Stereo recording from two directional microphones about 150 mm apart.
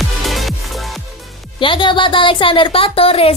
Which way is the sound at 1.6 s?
35° left (ahead or behind).